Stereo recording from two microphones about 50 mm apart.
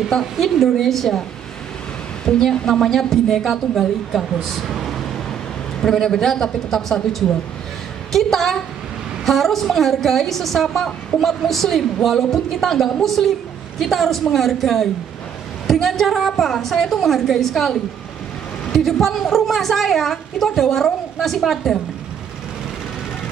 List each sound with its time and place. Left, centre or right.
0.1 s a woman's voice: centre
2.2 s a man's voice: centre
5.8 s a man's voice: centre